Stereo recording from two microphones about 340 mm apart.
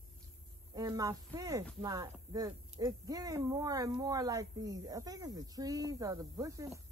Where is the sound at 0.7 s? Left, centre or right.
Centre.